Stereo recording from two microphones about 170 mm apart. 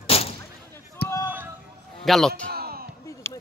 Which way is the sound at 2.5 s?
65° right (ahead or behind).